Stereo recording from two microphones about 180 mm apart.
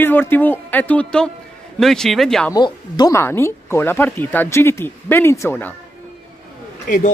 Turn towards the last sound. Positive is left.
turn(degrees=50)  # may be behind; listen again after turning